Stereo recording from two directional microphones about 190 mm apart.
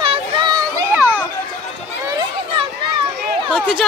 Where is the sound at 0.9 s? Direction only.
10° right (ahead or behind).